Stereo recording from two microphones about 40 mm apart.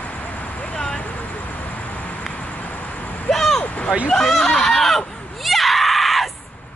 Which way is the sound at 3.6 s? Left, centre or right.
Left.